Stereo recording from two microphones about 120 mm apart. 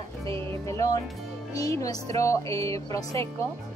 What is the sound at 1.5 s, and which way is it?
Speech, 30° left (ahead or behind).